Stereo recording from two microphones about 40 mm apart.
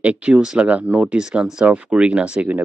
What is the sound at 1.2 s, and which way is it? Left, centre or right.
Speech, centre.